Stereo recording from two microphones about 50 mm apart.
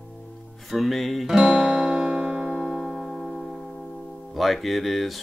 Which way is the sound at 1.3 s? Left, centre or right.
Centre.